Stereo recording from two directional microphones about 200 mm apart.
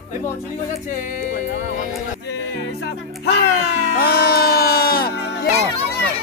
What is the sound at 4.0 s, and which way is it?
Music, 50° left (ahead or behind).